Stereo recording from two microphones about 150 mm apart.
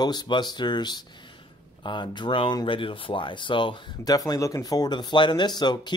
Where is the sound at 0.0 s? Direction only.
30° left (ahead or behind).